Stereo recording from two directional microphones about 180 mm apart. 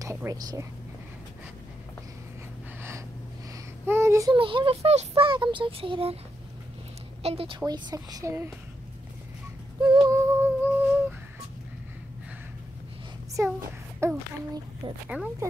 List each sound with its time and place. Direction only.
0.0 s speech: 15° right (ahead or behind)
3.8 s a sound: 15° right (ahead or behind)
4.3 s speech: 30° right (ahead or behind)
7.2 s speech: 30° right (ahead or behind)
9.9 s humming: 15° right (ahead or behind)
13.6 s a sound: 15° right (ahead or behind)
15.1 s speech: 10° right (ahead or behind)